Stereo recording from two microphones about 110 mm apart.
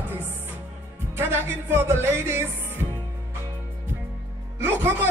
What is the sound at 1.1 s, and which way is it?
Music, 20° right (ahead or behind).